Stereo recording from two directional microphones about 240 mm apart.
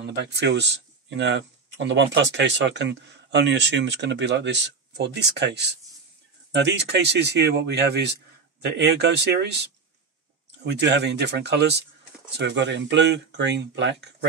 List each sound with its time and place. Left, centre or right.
0.0 s speech: right